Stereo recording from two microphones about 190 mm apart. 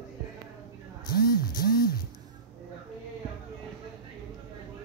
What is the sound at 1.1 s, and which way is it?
Speech, 55° left (ahead or behind).